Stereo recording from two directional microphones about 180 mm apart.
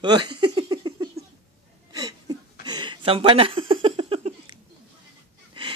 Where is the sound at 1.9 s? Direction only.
20° right (ahead or behind).